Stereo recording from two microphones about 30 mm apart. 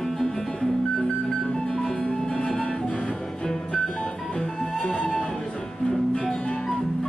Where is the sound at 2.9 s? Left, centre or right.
Left.